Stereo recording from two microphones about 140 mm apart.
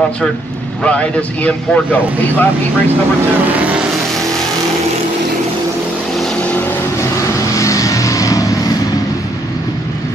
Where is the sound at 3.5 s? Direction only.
10° right (ahead or behind).